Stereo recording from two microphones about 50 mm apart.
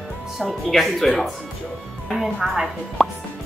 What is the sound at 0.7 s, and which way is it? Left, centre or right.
Speech, centre.